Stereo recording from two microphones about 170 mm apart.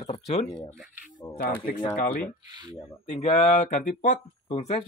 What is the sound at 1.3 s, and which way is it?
Speech, 60° left (ahead or behind).